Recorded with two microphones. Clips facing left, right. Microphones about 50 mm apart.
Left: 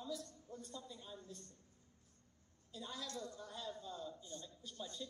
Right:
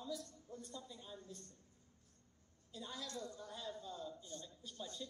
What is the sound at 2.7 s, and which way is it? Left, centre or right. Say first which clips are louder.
Speech: left 1 dB; centre.